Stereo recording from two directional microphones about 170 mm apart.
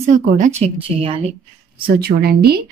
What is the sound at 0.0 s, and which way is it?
Speech, 45° right (ahead or behind).